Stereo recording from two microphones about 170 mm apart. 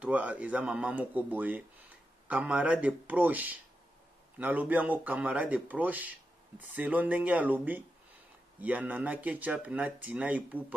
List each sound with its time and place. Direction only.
0.0 s speech: 10° right (ahead or behind)